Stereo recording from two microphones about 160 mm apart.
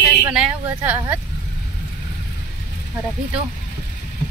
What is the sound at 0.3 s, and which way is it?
Speech, 10° right (ahead or behind).